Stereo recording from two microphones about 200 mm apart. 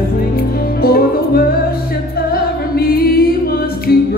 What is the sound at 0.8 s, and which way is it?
Music, 50° left (ahead or behind).